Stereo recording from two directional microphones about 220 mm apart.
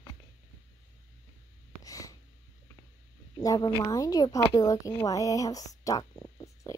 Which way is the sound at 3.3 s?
15° left (ahead or behind).